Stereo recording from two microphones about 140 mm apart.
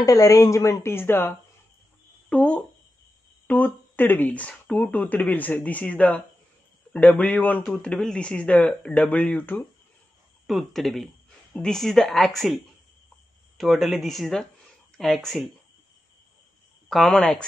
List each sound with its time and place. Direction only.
0.0 s speech: 25° left (ahead or behind)
10.4 s speech: centre (ahead or behind)
13.6 s speech: centre (ahead or behind)
16.9 s speech: 5° left (ahead or behind)